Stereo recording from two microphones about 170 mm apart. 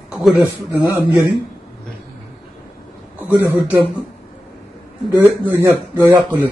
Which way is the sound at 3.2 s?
10° right (ahead or behind).